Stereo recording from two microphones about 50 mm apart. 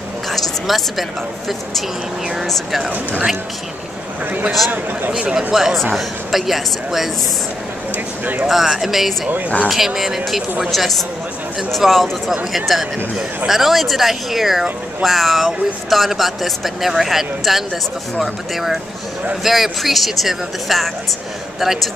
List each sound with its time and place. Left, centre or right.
0.3 s a sound: centre
2.4 s speech: centre
2.9 s speech: right
4.5 s speech: centre
5.2 s speech: right
5.5 s speech: centre
7.9 s a sound: right
8.5 s speech: centre